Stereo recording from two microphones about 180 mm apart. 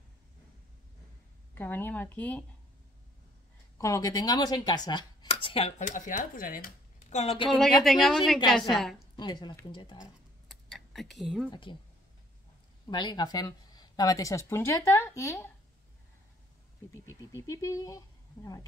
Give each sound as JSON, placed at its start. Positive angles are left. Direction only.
{"t": 1.5, "sound": "speech", "side_deg": 10}
{"t": 3.7, "sound": "speech", "side_deg": 20}
{"t": 7.4, "sound": "a woman's voice", "side_deg": 0}
{"t": 9.1, "sound": "speech", "side_deg": 25}
{"t": 10.5, "sound": "a sound", "side_deg": 0}
{"t": 12.8, "sound": "speech", "side_deg": 25}
{"t": 16.9, "sound": "speech", "side_deg": 15}